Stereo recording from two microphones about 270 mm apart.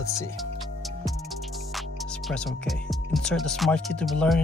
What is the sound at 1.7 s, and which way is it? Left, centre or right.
Speech, centre.